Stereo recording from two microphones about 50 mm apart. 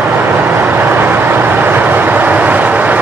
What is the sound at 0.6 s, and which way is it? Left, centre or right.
Vehicle, right.